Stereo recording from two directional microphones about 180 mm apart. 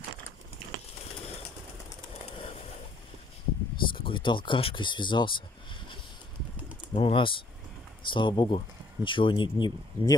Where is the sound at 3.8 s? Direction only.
30° left (ahead or behind).